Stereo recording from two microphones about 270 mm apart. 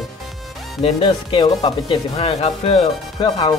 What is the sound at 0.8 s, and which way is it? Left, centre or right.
Speech, centre.